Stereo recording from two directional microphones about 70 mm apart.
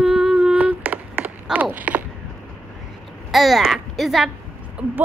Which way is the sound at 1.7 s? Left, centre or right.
Right.